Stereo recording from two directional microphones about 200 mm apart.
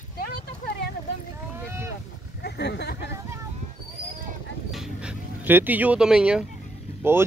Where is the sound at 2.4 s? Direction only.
55° left (ahead or behind).